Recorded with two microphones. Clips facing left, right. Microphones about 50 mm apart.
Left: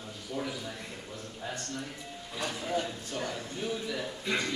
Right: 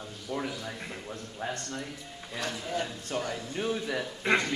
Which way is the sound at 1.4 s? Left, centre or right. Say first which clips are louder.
Right 5 dB; right.